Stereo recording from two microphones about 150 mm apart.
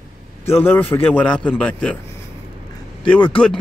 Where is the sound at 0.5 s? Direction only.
15° left (ahead or behind).